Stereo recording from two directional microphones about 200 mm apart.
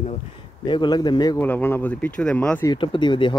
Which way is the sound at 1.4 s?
10° left (ahead or behind).